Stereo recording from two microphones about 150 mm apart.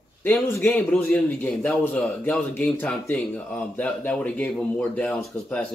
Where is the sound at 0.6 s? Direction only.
10° left (ahead or behind).